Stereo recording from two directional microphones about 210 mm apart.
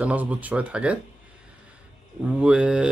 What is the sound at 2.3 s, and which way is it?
Speech, 5° right (ahead or behind).